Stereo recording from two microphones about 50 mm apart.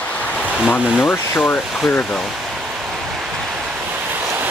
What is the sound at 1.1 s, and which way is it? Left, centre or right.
Speech, left.